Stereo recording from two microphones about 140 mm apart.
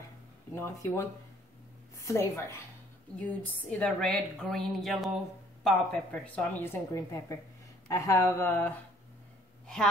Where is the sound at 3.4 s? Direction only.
10° left (ahead or behind).